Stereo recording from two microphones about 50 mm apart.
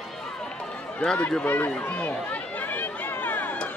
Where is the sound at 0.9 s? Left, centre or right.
Left.